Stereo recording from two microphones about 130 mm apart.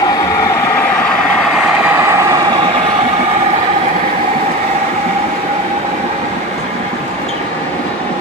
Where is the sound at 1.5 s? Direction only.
10° right (ahead or behind).